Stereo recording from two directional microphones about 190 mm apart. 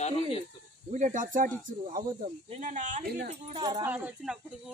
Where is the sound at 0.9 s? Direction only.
40° right (ahead or behind).